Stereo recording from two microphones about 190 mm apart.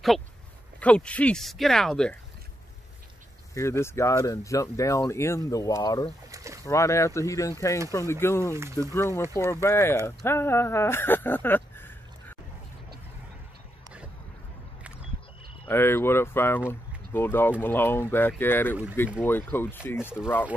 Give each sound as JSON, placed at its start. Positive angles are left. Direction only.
{"t": 0.7, "sound": "speech", "side_deg": 5}
{"t": 3.5, "sound": "speech", "side_deg": 15}
{"t": 6.3, "sound": "boat", "side_deg": -15}
{"t": 6.6, "sound": "speech", "side_deg": 15}
{"t": 15.6, "sound": "speech", "side_deg": 10}